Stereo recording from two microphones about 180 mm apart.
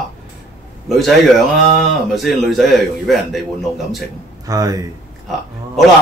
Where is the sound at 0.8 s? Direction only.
Centre (ahead or behind).